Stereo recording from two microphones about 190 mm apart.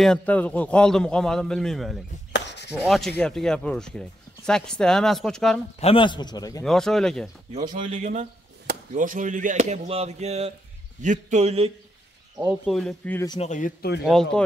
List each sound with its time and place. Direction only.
0.0 s speech: 5° left (ahead or behind)
2.3 s chopping: 65° left (ahead or behind)
2.7 s speech: centre (ahead or behind)
5.8 s a man's voice: 30° left (ahead or behind)
6.6 s speech: centre (ahead or behind)
7.7 s speech: 40° right (ahead or behind)
12.6 s speech: centre (ahead or behind)
13.4 s speech: 40° left (ahead or behind)
14.0 s speech: centre (ahead or behind)